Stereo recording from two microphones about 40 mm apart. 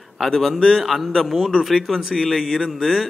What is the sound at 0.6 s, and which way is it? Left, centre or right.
Speech, centre.